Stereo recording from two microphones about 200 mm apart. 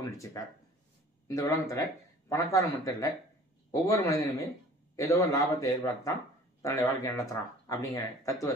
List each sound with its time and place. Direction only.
0.0 s speech: 15° left (ahead or behind)